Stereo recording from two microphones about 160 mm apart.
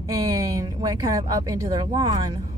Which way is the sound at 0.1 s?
20° right (ahead or behind).